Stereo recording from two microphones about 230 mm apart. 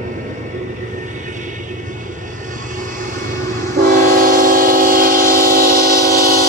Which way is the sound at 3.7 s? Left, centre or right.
Right.